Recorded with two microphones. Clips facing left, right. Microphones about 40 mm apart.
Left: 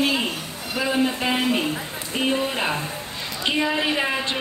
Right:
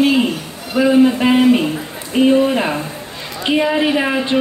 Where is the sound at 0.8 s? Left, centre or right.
Centre.